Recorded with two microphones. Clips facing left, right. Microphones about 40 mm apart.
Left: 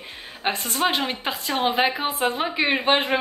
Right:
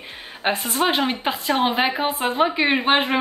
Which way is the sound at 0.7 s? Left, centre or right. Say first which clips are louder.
Right 2 dB; centre.